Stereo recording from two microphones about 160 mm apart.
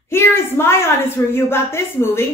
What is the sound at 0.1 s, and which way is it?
A woman's voice, 15° left (ahead or behind).